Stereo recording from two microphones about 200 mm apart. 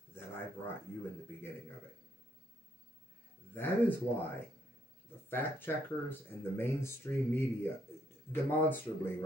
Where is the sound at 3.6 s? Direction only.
10° left (ahead or behind).